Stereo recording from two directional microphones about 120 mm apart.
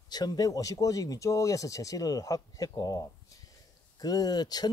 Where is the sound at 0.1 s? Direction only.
35° left (ahead or behind).